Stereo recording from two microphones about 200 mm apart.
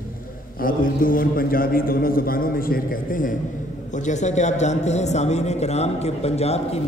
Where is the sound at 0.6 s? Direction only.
45° left (ahead or behind).